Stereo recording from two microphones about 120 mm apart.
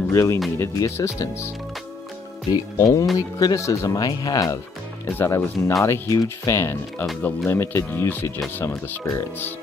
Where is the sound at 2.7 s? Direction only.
25° left (ahead or behind).